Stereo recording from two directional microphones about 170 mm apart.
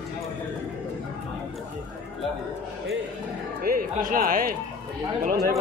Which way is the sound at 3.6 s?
55° right (ahead or behind).